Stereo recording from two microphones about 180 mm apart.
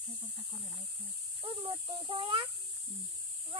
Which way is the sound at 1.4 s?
30° right (ahead or behind).